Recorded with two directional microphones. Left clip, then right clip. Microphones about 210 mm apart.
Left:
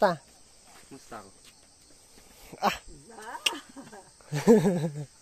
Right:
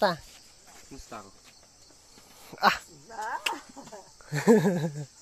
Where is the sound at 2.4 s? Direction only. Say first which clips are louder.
Right 4 dB; 10° left (ahead or behind).